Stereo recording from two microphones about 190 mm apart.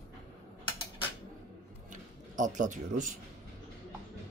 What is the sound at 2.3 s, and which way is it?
Speech, 40° right (ahead or behind).